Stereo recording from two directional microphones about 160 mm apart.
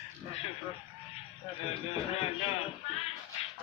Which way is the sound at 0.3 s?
40° left (ahead or behind).